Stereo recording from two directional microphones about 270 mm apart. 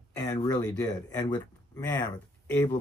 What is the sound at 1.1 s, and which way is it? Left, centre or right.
Speech, centre.